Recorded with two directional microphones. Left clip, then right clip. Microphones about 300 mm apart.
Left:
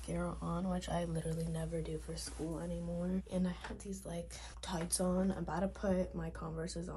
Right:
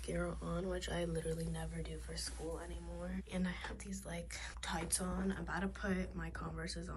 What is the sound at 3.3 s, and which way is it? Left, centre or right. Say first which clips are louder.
Speech: left 2 dB; centre.